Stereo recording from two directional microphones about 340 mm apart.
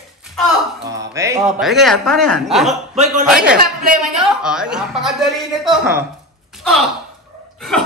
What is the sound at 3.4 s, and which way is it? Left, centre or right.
Speech, right.